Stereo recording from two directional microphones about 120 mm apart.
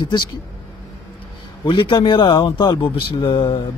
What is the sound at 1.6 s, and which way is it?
Speech, 45° left (ahead or behind).